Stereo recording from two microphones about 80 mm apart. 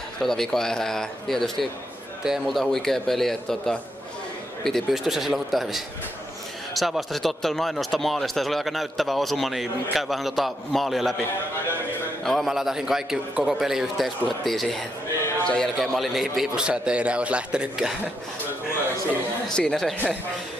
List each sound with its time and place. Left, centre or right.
0.2 s speech: centre
12.3 s a man's voice: centre
15.8 s a man's voice: centre
19.4 s speech: centre